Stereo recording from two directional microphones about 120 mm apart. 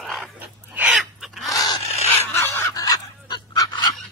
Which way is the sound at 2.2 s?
20° left (ahead or behind).